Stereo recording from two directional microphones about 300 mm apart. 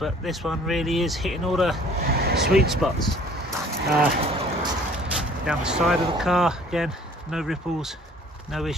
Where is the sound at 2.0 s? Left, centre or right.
Right.